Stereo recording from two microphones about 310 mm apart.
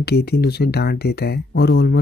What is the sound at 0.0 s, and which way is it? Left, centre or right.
Speech, left.